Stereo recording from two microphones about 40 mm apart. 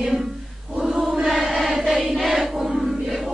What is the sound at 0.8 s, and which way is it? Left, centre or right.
Choir, centre.